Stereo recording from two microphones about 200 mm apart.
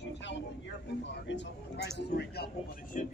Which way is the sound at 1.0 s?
60° left (ahead or behind).